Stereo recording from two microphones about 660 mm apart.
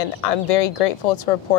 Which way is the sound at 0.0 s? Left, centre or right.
Left.